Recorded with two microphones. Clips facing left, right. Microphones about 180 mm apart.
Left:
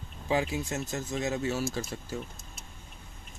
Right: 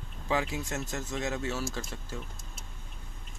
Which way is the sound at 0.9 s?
5° left (ahead or behind).